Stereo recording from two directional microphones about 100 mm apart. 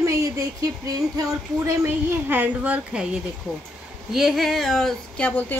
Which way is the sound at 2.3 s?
15° right (ahead or behind).